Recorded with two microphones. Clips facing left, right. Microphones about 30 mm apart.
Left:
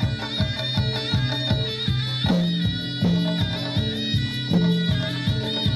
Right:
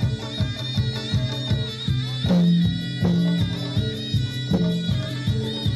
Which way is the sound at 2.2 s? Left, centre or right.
Left.